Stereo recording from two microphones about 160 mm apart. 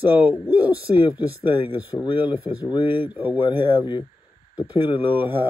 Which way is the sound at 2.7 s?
30° left (ahead or behind).